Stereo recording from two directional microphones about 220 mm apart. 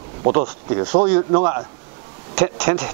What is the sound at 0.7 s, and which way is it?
A man's voice, 15° right (ahead or behind).